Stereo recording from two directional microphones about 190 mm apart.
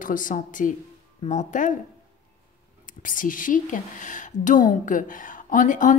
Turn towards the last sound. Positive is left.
turn(degrees=40)  # may be behind; listen again after turning